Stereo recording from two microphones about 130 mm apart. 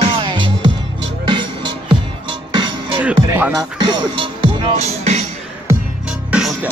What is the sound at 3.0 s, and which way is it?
Speech, 10° right (ahead or behind).